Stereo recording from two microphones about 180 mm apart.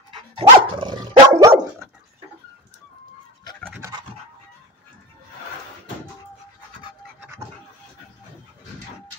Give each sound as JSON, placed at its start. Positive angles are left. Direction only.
{"t": 0.4, "sound": "dog", "side_deg": -30}